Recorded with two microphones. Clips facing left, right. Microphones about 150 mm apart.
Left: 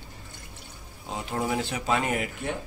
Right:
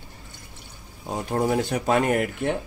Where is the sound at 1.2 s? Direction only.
45° right (ahead or behind).